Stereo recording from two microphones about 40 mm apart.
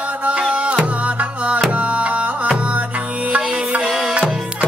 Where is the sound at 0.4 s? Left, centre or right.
Right.